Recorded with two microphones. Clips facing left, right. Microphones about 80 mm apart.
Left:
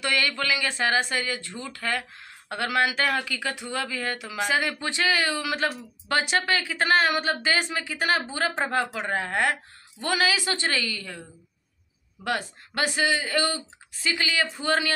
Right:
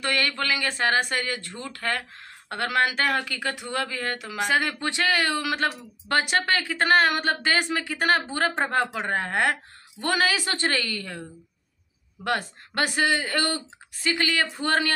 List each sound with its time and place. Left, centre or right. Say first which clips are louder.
0.0 s speech: even; right
12.3 s speech: right 2 dB; right